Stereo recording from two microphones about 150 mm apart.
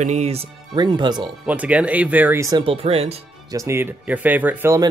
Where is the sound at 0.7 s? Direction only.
30° right (ahead or behind).